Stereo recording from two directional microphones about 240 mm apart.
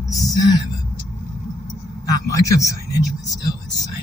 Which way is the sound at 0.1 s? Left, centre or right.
Centre.